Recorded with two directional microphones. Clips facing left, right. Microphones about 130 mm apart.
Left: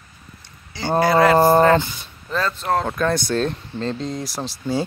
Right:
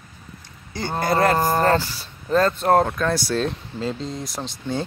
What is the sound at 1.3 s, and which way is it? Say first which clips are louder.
Speech: left 7 dB; 45° left (ahead or behind).